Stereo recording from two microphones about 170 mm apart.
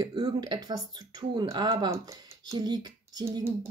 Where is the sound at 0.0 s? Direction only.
25° right (ahead or behind).